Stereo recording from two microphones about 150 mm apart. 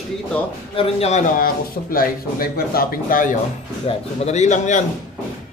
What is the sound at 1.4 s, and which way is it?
Speech, 75° left (ahead or behind).